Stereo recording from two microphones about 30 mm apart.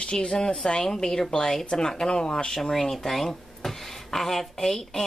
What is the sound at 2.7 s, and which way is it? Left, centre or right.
Speech, centre.